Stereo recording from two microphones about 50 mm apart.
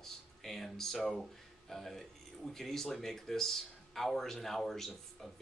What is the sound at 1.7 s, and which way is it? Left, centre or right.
Speech, centre.